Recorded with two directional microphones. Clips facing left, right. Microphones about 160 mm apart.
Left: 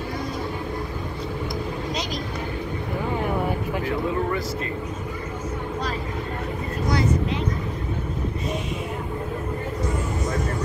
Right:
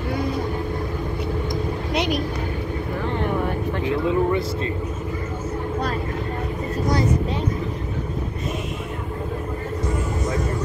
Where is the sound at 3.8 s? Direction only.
20° right (ahead or behind).